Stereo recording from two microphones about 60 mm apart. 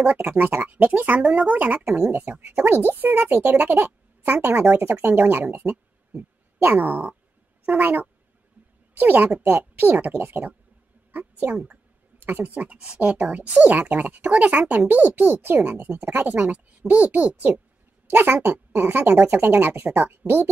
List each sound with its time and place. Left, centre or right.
0.0 s speech: centre
1.8 s speech: centre
2.1 s speech: right
5.6 s a sound: right
7.6 s speech: right
12.3 s speech: right
12.5 s speech: centre
18.1 s speech: right